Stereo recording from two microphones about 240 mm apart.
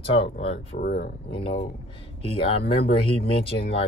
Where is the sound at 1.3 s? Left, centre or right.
Left.